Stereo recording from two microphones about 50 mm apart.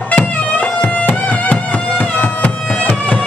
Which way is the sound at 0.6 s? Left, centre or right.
Left.